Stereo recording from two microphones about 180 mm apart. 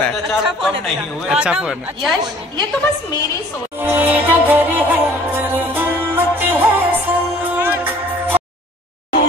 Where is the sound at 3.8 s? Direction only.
10° right (ahead or behind).